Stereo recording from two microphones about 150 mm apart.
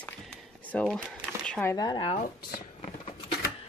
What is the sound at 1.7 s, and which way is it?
Speech, 30° left (ahead or behind).